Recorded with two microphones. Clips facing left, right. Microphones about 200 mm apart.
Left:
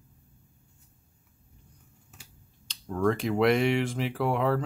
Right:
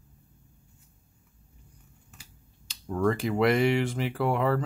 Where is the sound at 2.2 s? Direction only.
5° right (ahead or behind).